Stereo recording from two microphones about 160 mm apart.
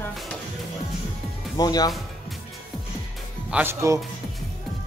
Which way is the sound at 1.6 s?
25° left (ahead or behind).